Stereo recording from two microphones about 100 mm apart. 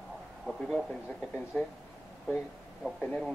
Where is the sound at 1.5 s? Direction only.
15° left (ahead or behind).